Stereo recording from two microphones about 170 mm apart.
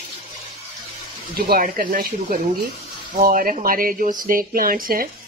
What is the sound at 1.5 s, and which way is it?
Speech, 60° right (ahead or behind).